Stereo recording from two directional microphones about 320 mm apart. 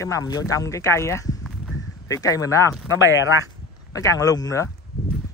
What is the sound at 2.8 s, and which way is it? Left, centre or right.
Speech, left.